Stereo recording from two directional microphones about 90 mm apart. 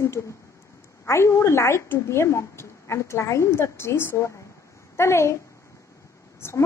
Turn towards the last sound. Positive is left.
turn(degrees=30)  # may be behind; listen again after turning